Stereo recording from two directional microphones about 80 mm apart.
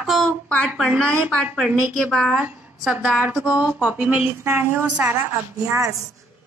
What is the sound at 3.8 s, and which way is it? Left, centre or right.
Speech, centre.